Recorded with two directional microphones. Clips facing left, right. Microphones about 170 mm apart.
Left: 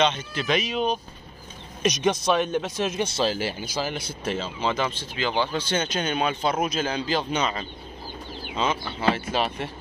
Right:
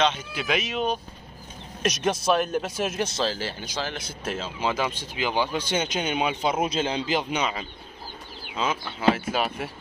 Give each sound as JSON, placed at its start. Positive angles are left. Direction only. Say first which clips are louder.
{"t": 0.0, "sound": "a man's voice", "louder": "left 1 dB", "side_deg": -5}
{"t": 3.2, "sound": "speech", "louder": "left 3 dB", "side_deg": 15}
{"t": 6.6, "sound": "a man's voice", "louder": "even", "side_deg": -25}